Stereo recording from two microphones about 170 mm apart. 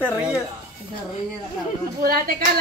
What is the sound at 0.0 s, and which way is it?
Speech, 10° right (ahead or behind).